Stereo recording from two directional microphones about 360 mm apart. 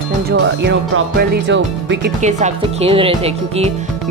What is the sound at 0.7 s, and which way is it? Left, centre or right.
A woman's voice, right.